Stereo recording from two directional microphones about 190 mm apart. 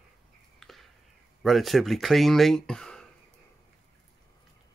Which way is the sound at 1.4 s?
Centre (ahead or behind).